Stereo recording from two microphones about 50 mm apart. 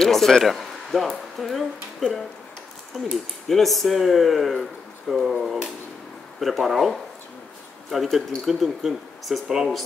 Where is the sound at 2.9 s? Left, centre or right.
Centre.